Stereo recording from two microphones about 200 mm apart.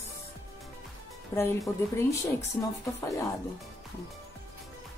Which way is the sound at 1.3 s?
15° left (ahead or behind).